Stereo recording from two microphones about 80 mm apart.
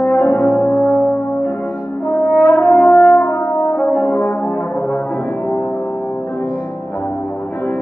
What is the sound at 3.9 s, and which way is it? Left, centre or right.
French horn, left.